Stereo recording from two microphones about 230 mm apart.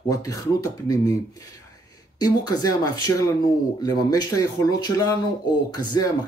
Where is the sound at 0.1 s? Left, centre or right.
Centre.